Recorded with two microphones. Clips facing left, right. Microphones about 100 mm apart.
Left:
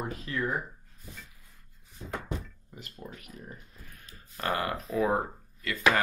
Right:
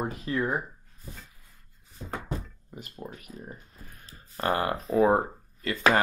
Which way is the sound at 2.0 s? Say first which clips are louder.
Right 1 dB; 35° right (ahead or behind).